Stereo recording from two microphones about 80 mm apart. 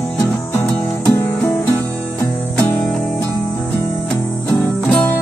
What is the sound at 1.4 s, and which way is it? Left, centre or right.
Music, centre.